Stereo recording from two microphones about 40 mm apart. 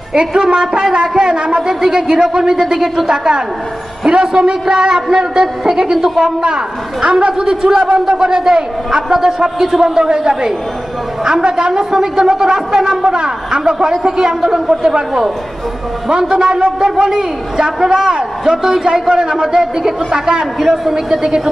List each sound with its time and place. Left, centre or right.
0.1 s a man's voice: right
5.9 s a man's voice: centre
6.4 s a man's voice: centre
20.5 s a man's voice: centre
20.9 s speech: centre